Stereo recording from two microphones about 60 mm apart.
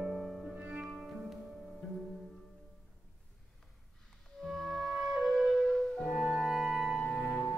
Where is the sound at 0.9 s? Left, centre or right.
Centre.